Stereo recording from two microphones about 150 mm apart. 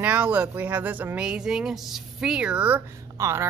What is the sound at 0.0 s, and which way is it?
Speech, 10° right (ahead or behind).